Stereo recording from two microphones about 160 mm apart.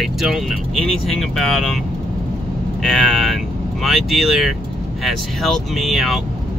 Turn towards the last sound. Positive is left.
turn(degrees=0)  # may be behind; listen again after turning